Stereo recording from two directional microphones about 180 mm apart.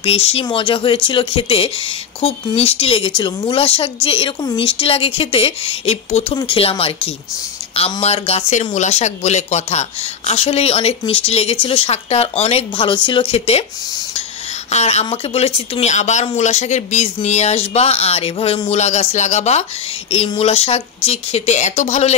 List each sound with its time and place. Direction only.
0.0 s speech: 35° left (ahead or behind)
14.7 s speech: 40° left (ahead or behind)